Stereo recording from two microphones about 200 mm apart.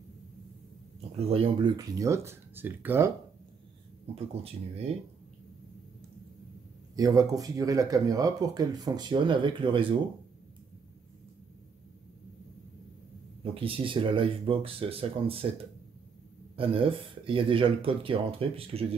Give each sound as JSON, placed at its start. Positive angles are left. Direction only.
{"t": 1.1, "sound": "speech", "side_deg": -30}
{"t": 4.1, "sound": "speech", "side_deg": -30}
{"t": 7.0, "sound": "speech", "side_deg": -15}
{"t": 13.4, "sound": "speech", "side_deg": -25}
{"t": 16.5, "sound": "speech", "side_deg": -25}